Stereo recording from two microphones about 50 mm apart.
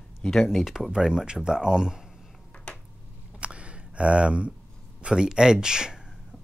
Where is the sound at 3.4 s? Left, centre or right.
Right.